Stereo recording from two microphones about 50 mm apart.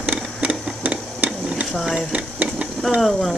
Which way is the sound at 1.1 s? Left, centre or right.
Right.